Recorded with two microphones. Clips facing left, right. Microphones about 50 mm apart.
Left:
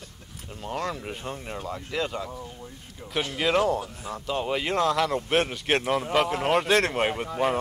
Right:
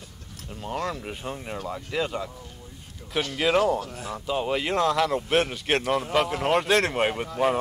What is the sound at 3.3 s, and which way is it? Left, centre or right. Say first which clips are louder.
Speech: right 1 dB; centre.